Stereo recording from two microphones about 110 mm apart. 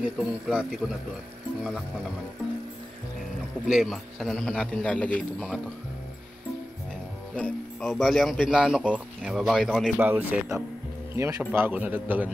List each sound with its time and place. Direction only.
0.0 s speech: 5° right (ahead or behind)
3.6 s speech: centre (ahead or behind)
7.3 s speech: 10° left (ahead or behind)
9.9 s speech: 15° right (ahead or behind)